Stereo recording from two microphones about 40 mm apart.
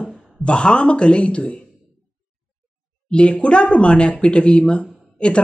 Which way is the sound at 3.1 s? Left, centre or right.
Left.